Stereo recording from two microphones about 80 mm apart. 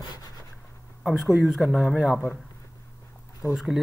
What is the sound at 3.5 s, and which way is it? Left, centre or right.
Speech, centre.